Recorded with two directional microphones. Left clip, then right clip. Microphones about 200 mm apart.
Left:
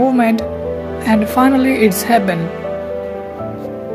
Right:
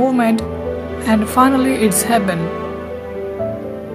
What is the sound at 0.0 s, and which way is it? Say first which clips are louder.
Speech: left 2 dB; 5° left (ahead or behind).